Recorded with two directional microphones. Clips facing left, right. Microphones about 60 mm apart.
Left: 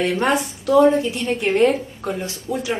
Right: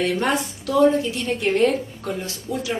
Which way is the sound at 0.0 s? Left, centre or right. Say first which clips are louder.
Left 2 dB; left.